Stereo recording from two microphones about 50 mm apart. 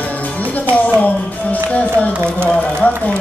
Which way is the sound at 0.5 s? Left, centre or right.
Left.